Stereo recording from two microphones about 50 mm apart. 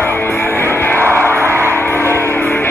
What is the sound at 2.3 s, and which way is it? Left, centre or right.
Music, left.